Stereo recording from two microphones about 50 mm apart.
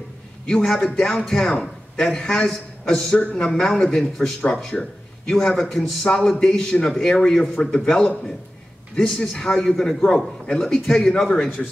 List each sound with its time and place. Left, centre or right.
0.7 s a man's voice: centre
3.2 s a man's voice: left